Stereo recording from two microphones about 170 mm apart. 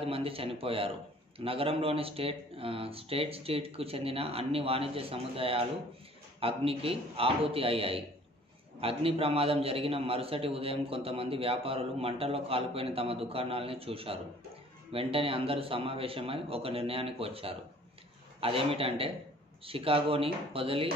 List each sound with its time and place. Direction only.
0.0 s a man's voice: 35° right (ahead or behind)